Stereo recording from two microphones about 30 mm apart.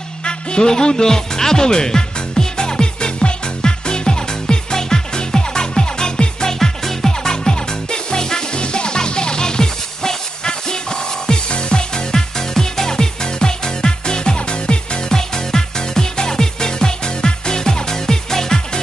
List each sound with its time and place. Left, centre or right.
0.2 s music: left
6.6 s music: centre